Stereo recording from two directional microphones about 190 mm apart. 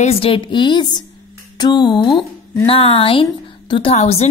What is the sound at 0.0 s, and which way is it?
A woman's voice, 30° left (ahead or behind).